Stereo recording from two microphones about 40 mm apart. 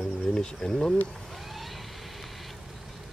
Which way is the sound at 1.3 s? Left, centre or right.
Centre.